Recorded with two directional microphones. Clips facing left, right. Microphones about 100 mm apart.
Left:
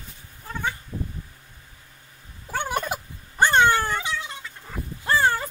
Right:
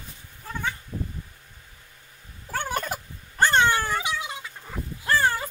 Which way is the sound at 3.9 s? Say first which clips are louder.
Even; 15° right (ahead or behind).